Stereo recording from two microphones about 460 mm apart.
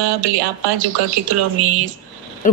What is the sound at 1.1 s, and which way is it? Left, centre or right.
Speech, right.